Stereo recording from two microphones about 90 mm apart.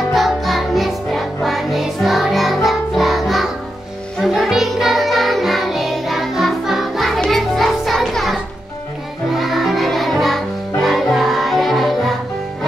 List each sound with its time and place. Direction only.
0.1 s music: centre (ahead or behind)